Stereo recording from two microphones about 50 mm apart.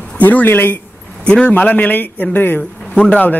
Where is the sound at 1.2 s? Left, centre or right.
Left.